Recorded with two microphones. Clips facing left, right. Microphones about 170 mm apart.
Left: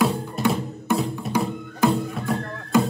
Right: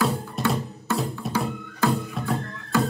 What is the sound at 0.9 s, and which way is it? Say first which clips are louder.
Music: left 3 dB; 15° left (ahead or behind).